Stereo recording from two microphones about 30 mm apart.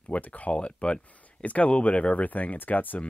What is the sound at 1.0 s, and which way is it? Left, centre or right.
Speech, left.